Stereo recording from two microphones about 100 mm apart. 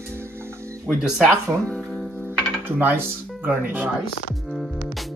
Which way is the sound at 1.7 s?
10° left (ahead or behind).